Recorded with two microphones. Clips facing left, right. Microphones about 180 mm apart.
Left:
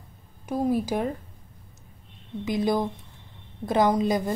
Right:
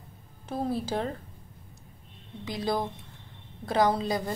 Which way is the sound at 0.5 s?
15° left (ahead or behind).